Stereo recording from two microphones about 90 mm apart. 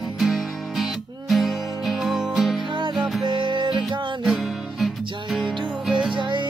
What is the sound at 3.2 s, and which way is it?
Music, 60° right (ahead or behind).